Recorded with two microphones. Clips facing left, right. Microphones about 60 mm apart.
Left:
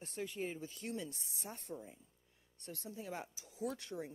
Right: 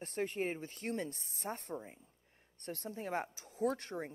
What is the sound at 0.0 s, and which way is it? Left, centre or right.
Speech, right.